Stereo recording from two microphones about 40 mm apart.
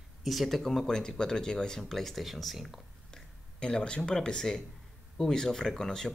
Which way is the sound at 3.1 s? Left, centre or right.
Left.